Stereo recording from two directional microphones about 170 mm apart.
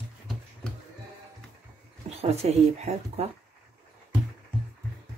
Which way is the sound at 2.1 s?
40° right (ahead or behind).